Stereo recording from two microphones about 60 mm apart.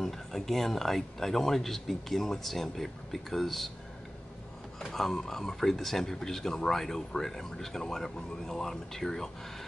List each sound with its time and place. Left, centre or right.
0.0 s speech: centre
4.7 s speech: centre